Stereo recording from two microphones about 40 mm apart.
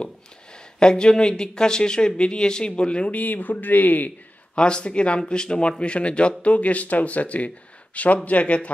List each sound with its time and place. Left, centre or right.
0.7 s speech: centre
3.1 s speech: left
4.6 s speech: left